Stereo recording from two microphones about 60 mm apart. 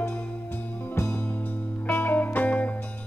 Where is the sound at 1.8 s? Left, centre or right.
Left.